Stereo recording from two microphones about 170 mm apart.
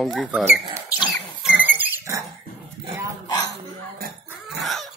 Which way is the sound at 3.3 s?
20° left (ahead or behind).